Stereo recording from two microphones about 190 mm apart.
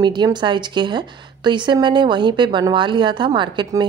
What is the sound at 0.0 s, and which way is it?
A woman's voice, 25° right (ahead or behind).